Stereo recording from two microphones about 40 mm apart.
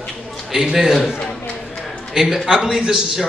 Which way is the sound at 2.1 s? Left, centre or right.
Centre.